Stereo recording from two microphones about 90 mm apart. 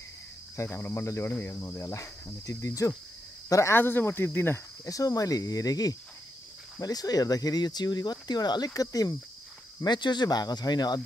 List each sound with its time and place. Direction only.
0.6 s speech: 25° left (ahead or behind)
1.3 s cricket: 25° left (ahead or behind)
3.4 s speech: 35° left (ahead or behind)
3.7 s speech: 25° left (ahead or behind)
4.8 s cricket: 40° left (ahead or behind)
6.8 s speech: 45° left (ahead or behind)
9.8 s speech: 55° left (ahead or behind)